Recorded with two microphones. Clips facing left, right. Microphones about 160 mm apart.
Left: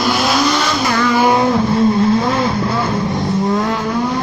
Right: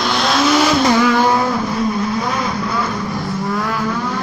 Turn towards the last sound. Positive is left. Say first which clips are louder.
# left 5 dB
turn(degrees=20)  # may be behind; listen again after turning